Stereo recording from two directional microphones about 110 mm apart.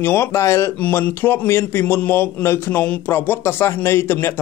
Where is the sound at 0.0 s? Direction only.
20° left (ahead or behind).